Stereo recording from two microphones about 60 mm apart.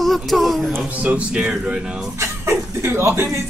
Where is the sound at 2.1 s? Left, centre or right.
Right.